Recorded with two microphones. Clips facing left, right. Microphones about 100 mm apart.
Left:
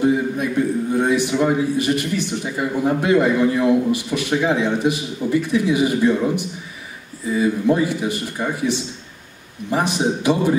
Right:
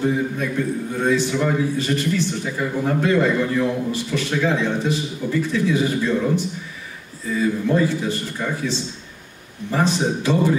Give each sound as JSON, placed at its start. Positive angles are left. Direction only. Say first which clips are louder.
{"t": 0.0, "sound": "a man's voice", "louder": "left 3 dB", "side_deg": 15}